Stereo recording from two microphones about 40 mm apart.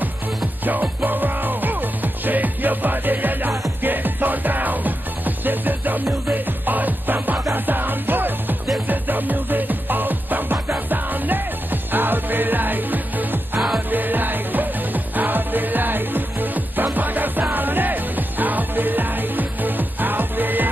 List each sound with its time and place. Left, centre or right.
0.7 s music: right